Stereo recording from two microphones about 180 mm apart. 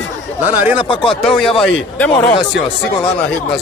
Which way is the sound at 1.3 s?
Centre (ahead or behind).